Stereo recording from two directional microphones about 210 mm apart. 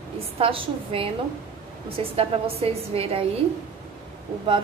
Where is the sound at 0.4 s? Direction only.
25° right (ahead or behind).